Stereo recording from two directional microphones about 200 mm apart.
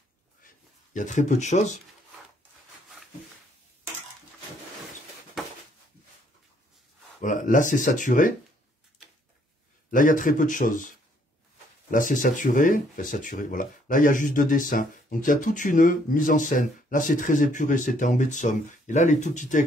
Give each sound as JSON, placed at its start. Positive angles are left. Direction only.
{"t": 0.9, "sound": "speech", "side_deg": 40}
{"t": 7.2, "sound": "speech", "side_deg": 40}
{"t": 9.8, "sound": "speech", "side_deg": 40}
{"t": 11.9, "sound": "speech", "side_deg": 40}